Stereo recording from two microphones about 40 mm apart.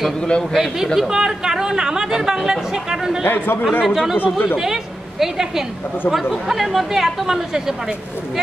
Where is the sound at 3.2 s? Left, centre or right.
Left.